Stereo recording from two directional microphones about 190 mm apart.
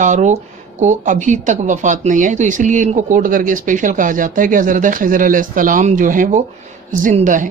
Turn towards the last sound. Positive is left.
turn(degrees=-45)  # may be behind; listen again after turning